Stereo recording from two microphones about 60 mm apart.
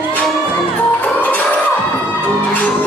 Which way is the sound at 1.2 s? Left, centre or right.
Left.